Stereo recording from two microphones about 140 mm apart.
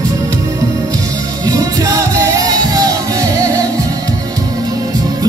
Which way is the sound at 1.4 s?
25° right (ahead or behind).